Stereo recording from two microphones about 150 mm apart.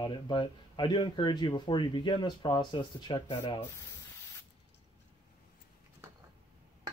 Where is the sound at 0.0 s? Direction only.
30° left (ahead or behind).